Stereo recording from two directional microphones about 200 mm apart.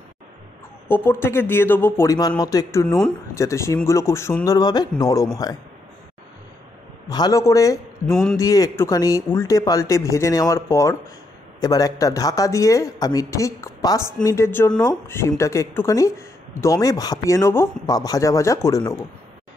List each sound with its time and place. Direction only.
0.8 s speech: 10° left (ahead or behind)
7.1 s speech: 20° left (ahead or behind)